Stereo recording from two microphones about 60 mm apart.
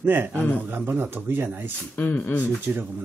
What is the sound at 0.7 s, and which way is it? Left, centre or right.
Speech, right.